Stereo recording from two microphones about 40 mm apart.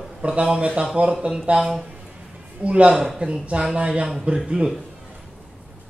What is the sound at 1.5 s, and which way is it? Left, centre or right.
A man's voice, right.